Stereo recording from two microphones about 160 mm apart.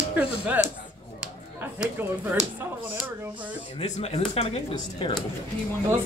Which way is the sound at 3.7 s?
40° left (ahead or behind).